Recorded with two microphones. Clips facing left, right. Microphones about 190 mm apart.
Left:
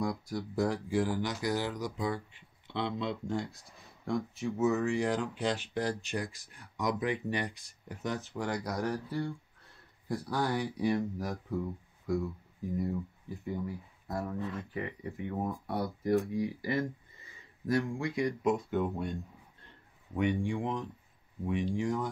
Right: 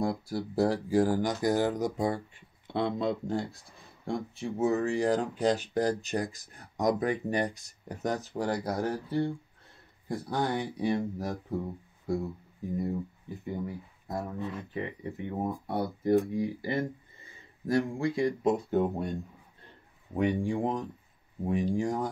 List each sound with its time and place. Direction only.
0.0 s speech: 30° right (ahead or behind)
4.0 s speech: 30° right (ahead or behind)
13.5 s speech: 20° right (ahead or behind); by 19.1 s 40° right (ahead or behind)
20.2 s speech: 40° right (ahead or behind)